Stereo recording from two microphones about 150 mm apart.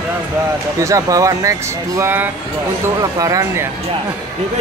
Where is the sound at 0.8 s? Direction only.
20° right (ahead or behind).